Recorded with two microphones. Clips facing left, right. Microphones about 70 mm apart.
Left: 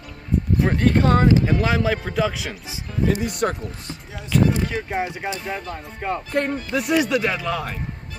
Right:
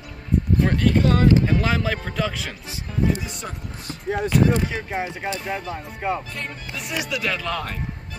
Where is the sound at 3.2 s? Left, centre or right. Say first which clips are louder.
Left 10 dB; left.